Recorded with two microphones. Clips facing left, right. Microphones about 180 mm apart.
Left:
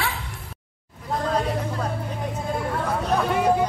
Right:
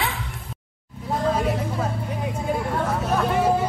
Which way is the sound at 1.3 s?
5° right (ahead or behind).